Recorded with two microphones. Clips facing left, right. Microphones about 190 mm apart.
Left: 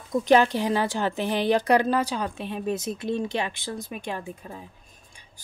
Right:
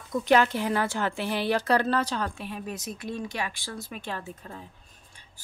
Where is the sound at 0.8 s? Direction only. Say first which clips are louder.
Left 3 dB; 20° left (ahead or behind).